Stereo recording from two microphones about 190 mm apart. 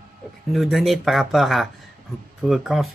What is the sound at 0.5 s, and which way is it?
Speech, centre (ahead or behind).